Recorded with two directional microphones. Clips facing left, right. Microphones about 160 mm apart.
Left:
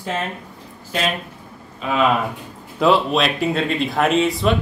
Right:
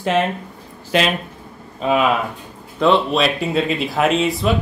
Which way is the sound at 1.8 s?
35° right (ahead or behind).